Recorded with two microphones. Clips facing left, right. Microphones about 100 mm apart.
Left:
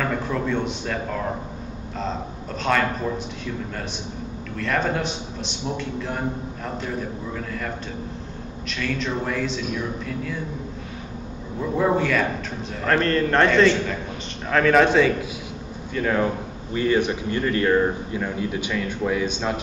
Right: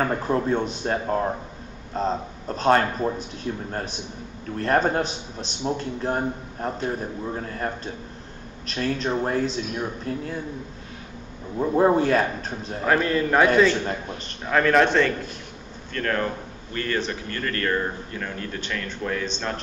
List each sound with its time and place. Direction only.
0.0 s a man's voice: 40° right (ahead or behind)
11.6 s a man's voice: 35° right (ahead or behind)
12.8 s a man's voice: 5° right (ahead or behind)
14.5 s a man's voice: centre (ahead or behind)